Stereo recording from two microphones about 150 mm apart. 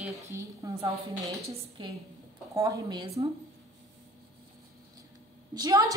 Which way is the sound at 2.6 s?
25° right (ahead or behind).